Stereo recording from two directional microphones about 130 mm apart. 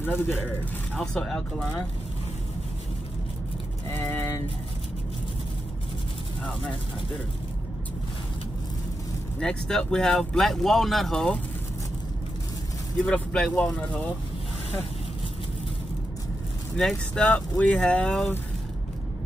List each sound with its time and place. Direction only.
0.9 s speech: 5° left (ahead or behind)
3.9 s vehicle: 15° left (ahead or behind)
9.4 s speech: 5° left (ahead or behind)
13.0 s speech: 5° left (ahead or behind)
16.7 s speech: 5° left (ahead or behind)